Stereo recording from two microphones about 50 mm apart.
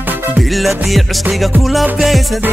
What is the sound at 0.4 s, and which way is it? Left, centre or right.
Music, centre.